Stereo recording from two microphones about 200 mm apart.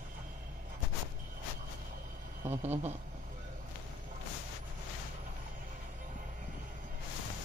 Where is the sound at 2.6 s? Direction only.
35° right (ahead or behind).